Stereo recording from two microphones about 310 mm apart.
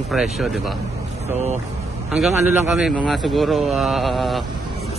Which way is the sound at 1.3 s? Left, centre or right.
Right.